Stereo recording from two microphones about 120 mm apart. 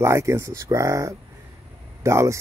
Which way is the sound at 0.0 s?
25° right (ahead or behind).